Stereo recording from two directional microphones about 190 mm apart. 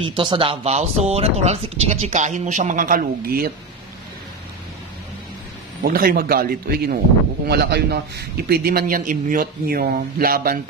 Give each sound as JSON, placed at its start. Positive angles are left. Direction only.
{"t": 0.0, "sound": "speech", "side_deg": -25}
{"t": 5.8, "sound": "a man's voice", "side_deg": -50}